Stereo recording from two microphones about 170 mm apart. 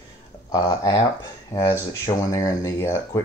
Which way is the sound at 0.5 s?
25° left (ahead or behind).